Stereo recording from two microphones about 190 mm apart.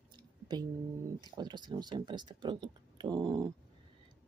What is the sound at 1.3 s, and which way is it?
Speech, 25° right (ahead or behind).